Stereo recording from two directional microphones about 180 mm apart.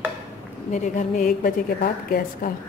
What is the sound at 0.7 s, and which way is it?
A woman's voice, 45° left (ahead or behind).